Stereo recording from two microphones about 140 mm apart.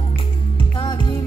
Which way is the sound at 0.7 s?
35° left (ahead or behind).